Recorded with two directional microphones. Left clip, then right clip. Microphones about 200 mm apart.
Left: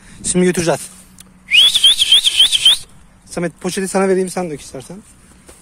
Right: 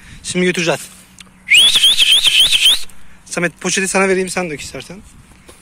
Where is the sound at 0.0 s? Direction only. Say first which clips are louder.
Left 1 dB; 30° left (ahead or behind).